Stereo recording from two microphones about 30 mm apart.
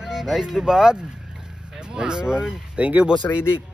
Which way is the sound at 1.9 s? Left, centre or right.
Right.